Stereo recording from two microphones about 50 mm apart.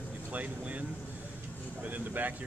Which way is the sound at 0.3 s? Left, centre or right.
Right.